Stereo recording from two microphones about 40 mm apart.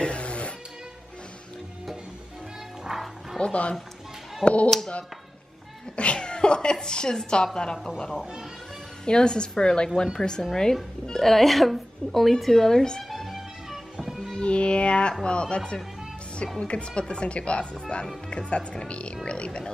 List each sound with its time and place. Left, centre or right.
0.0 s music: left
2.9 s music: centre
3.3 s speech: left
4.6 s speech: centre
5.9 s a woman's voice: left
9.0 s speech: left
13.1 s music: centre
14.3 s music: left
15.2 s speech: left